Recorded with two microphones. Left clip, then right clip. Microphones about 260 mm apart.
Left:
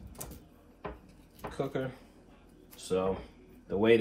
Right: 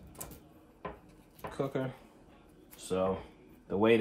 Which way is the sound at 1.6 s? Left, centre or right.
Right.